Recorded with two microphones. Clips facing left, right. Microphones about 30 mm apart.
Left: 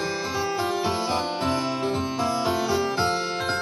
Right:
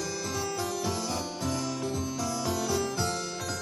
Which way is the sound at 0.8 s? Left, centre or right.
Left.